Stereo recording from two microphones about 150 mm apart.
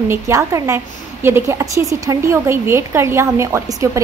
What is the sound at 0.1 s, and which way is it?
A woman's voice, 20° right (ahead or behind).